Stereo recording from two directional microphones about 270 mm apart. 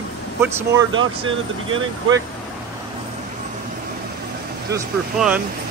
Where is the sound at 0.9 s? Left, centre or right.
Right.